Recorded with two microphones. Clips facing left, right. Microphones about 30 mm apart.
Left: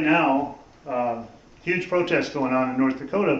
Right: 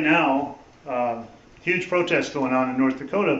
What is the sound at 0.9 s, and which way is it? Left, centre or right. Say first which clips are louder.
Speech: even; right.